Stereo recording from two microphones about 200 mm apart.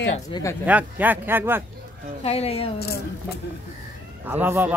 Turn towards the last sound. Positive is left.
turn(degrees=-10)  # may be behind; listen again after turning